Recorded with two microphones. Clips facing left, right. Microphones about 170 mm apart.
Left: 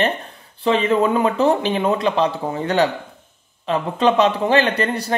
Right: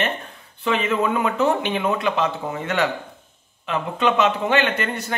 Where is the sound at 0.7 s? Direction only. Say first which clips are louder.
Left 4 dB; 35° left (ahead or behind).